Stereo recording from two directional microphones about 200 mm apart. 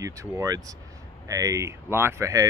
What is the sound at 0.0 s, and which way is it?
Speech, 15° right (ahead or behind).